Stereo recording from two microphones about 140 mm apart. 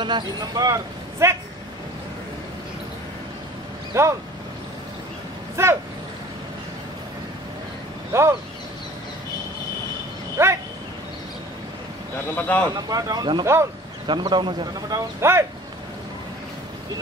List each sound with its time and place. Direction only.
0.0 s a man's voice: 30° right (ahead or behind)
1.2 s a man's voice: 20° right (ahead or behind)
3.9 s speech: 20° right (ahead or behind)
5.6 s speech: 20° right (ahead or behind)
8.1 s speech: 20° right (ahead or behind)
10.3 s a sound: 20° right (ahead or behind)
12.4 s speech: 10° left (ahead or behind)
12.7 s a man's voice: 25° right (ahead or behind)